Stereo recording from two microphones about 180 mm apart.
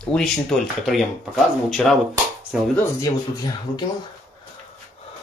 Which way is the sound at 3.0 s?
20° left (ahead or behind).